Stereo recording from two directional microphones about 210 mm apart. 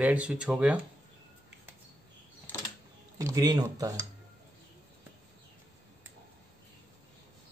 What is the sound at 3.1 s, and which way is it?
Speech, 15° right (ahead or behind).